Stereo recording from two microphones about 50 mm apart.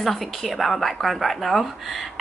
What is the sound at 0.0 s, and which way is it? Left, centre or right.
A woman's voice, centre.